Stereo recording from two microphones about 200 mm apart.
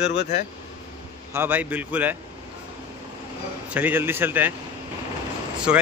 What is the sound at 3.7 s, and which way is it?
Speech, 10° right (ahead or behind).